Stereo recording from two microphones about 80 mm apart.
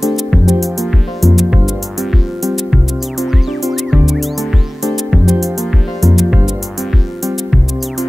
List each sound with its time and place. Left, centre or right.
0.0 s music: centre